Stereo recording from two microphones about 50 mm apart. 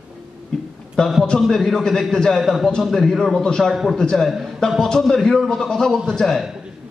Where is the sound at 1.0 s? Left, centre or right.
Centre.